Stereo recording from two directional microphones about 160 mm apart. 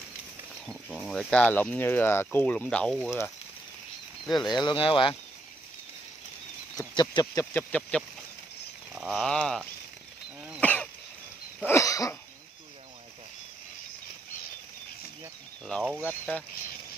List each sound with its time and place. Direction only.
0.7 s speech: centre (ahead or behind)
4.3 s speech: centre (ahead or behind)
4.6 s speech: 30° left (ahead or behind)
6.8 s speech: 25° left (ahead or behind)
7.5 s speech: 5° left (ahead or behind)
8.9 s a sound: centre (ahead or behind)
10.6 s cough: 10° left (ahead or behind)
16.0 s speech: 10° left (ahead or behind)